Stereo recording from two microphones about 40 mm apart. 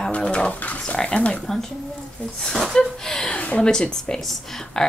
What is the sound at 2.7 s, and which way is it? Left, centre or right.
Speech, centre.